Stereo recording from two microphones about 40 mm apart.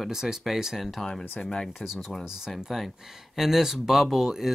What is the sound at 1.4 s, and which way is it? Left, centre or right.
Speech, left.